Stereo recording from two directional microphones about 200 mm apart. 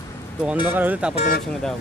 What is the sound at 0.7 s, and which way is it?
Speech, 10° right (ahead or behind).